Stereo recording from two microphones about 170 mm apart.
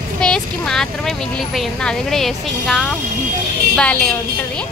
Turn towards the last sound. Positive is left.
turn(degrees=5)  # may be behind; listen again after turning